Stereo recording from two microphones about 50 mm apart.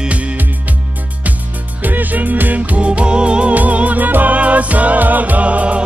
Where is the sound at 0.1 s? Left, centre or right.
Right.